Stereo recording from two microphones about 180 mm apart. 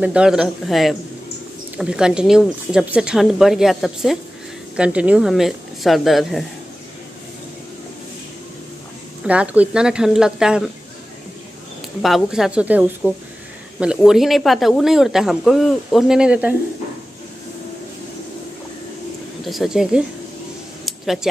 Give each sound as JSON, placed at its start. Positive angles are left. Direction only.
{"t": 0.0, "sound": "speech", "side_deg": -5}
{"t": 9.2, "sound": "speech", "side_deg": -5}
{"t": 12.0, "sound": "speech", "side_deg": 0}
{"t": 19.4, "sound": "speech", "side_deg": 0}
{"t": 20.8, "sound": "a sound", "side_deg": 0}